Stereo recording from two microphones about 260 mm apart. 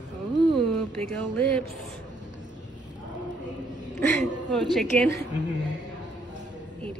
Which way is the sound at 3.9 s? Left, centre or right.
Centre.